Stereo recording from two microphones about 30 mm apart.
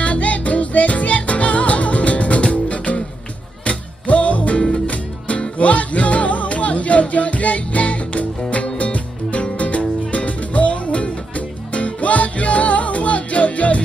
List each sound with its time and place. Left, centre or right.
0.0 s music: left